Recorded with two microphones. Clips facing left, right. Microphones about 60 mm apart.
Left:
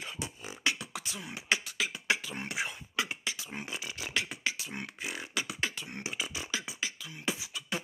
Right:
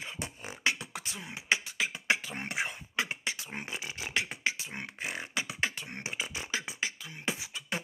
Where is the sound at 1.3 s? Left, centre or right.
Right.